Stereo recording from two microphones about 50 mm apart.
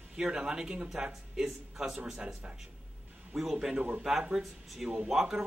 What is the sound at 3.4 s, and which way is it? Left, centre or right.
Speech, centre.